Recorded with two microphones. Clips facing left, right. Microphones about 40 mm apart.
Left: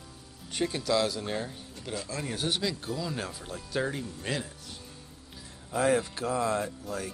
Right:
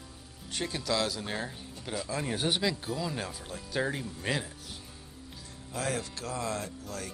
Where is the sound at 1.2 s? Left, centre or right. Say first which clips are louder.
Left 2 dB; centre.